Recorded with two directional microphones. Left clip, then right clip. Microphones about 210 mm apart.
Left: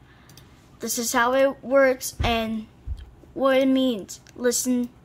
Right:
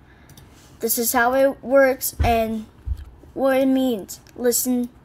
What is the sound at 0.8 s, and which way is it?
Speech, 15° left (ahead or behind).